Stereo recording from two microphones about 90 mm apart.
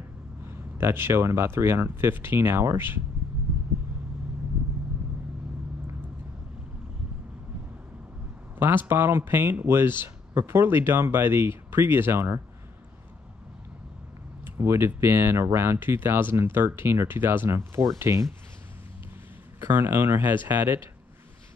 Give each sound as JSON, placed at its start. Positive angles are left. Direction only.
{"t": 0.4, "sound": "speech", "side_deg": -25}
{"t": 8.5, "sound": "speech", "side_deg": -25}
{"t": 14.4, "sound": "speech", "side_deg": -25}
{"t": 19.6, "sound": "speech", "side_deg": -25}